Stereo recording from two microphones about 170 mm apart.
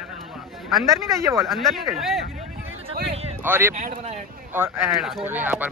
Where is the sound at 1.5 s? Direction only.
Centre (ahead or behind).